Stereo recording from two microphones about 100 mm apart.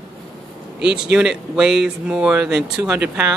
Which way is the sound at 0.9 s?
5° right (ahead or behind).